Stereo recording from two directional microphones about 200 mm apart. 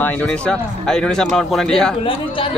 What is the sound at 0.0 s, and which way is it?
A man's voice, 10° left (ahead or behind).